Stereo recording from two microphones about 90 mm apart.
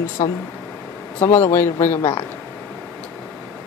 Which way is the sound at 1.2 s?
20° left (ahead or behind).